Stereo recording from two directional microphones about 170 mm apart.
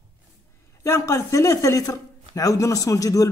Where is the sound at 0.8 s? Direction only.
15° left (ahead or behind).